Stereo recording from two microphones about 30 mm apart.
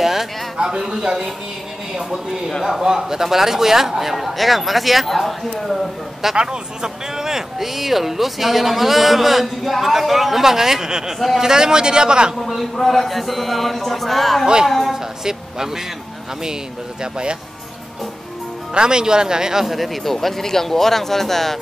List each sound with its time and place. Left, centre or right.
0.0 s a sound: centre
0.6 s a man's voice: right
2.6 s speech: centre
6.3 s a man's voice: right
12.4 s speech: centre
15.2 s speech: centre
17.0 s speech: right
18.7 s a man's voice: right
19.6 s speech: centre